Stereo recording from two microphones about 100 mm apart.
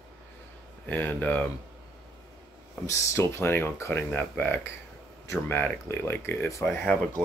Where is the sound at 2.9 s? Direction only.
25° left (ahead or behind).